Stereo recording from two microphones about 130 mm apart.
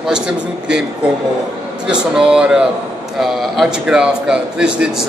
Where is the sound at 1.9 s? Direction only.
5° right (ahead or behind).